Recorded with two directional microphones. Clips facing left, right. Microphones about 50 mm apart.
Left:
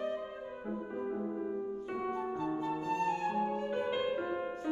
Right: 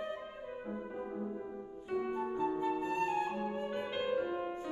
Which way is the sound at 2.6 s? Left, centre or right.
Centre.